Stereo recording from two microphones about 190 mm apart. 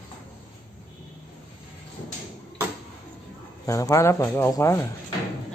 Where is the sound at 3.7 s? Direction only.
15° left (ahead or behind).